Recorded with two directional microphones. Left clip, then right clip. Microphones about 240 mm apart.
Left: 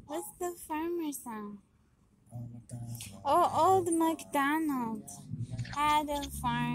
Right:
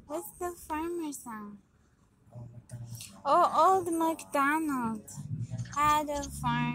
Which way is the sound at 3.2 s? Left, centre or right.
Centre.